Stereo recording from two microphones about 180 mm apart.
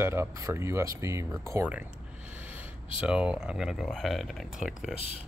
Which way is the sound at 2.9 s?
5° right (ahead or behind).